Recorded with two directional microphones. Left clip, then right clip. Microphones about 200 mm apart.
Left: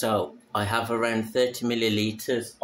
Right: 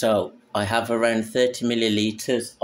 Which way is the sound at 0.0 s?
20° right (ahead or behind).